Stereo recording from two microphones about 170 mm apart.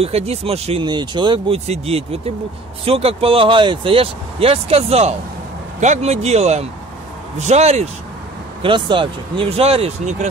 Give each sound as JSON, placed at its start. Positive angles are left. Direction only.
{"t": 0.0, "sound": "speech", "side_deg": -35}
{"t": 8.6, "sound": "speech", "side_deg": -30}